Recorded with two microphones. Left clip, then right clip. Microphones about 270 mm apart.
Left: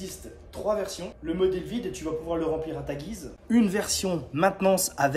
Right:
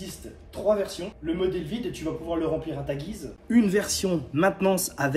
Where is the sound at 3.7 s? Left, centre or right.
Left.